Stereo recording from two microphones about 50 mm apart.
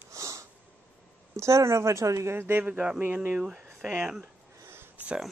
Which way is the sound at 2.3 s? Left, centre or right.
Right.